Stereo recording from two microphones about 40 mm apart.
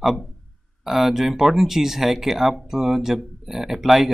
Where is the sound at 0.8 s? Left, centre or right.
Centre.